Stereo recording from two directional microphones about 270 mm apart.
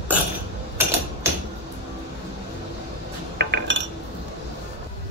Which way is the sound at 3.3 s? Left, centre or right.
Right.